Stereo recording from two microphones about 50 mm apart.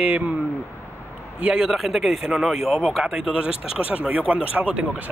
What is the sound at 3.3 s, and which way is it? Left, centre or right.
Speech, right.